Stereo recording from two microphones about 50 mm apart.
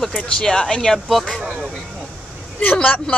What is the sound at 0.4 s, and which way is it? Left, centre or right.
Speech, centre.